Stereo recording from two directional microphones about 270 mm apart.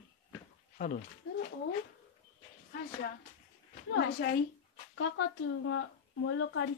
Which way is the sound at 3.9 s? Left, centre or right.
Left.